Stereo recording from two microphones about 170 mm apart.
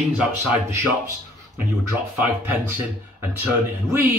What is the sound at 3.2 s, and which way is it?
Speech, 10° right (ahead or behind).